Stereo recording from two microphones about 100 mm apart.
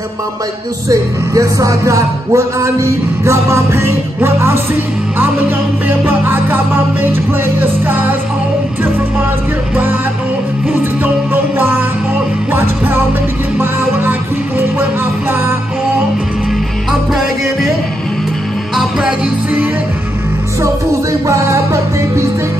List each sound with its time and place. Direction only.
0.8 s music: 35° right (ahead or behind)
5.9 s music: 20° right (ahead or behind)
18.8 s music: 5° right (ahead or behind)
20.9 s music: 30° right (ahead or behind)